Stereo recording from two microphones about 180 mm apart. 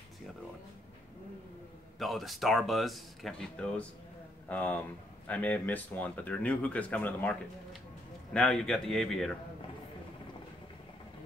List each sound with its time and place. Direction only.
2.0 s speech: centre (ahead or behind)